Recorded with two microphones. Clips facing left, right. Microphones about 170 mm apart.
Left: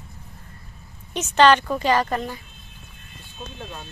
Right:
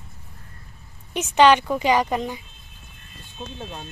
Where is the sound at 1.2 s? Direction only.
15° right (ahead or behind).